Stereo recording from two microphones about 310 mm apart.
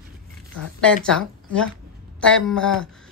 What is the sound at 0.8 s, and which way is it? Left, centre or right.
A woman's voice, centre.